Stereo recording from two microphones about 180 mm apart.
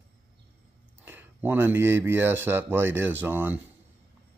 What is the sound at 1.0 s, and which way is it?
Speech, 10° right (ahead or behind).